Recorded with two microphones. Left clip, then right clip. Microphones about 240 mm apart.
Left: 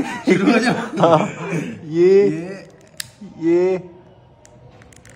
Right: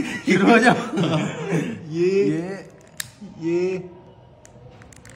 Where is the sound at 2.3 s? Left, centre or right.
Centre.